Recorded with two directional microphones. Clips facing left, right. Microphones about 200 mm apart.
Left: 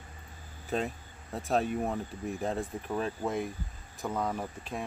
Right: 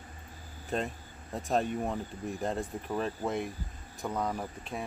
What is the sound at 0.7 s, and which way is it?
Speech, centre (ahead or behind).